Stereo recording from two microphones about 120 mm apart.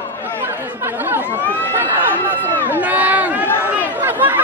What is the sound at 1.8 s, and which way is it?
Speech, 15° right (ahead or behind).